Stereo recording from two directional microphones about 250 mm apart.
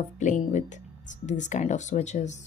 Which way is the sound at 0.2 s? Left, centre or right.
Left.